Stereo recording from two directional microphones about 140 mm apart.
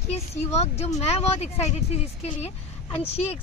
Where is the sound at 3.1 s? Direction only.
45° left (ahead or behind).